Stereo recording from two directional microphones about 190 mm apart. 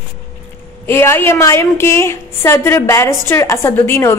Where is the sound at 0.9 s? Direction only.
10° left (ahead or behind).